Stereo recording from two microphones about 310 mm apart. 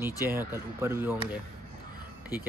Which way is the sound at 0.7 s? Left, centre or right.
Centre.